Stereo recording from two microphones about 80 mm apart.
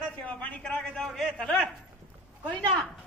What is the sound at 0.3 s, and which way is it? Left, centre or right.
Speech, centre.